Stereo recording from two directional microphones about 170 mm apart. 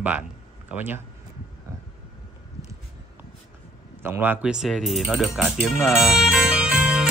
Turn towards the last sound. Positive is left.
turn(degrees=-5)  # may be behind; listen again after turning